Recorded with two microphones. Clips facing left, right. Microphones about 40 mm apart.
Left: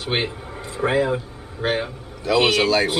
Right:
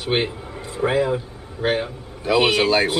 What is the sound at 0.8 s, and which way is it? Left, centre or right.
Speech, centre.